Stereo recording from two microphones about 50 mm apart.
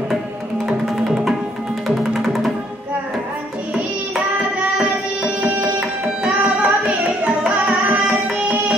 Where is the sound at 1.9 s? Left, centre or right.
Centre.